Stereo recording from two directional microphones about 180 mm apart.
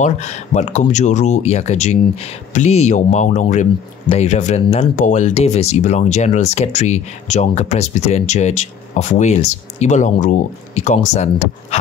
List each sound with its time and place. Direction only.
0.0 s speech: 40° left (ahead or behind)